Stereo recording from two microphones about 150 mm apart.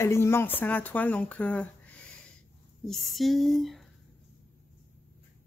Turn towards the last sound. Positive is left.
turn(degrees=0)  # may be behind; listen again after turning